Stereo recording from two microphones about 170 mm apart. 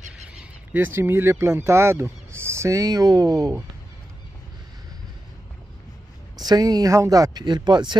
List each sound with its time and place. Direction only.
0.3 s speech: 10° right (ahead or behind)
6.4 s speech: 25° right (ahead or behind)